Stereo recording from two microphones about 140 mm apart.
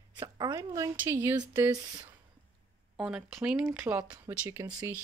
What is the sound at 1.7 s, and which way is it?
Speech, 25° right (ahead or behind).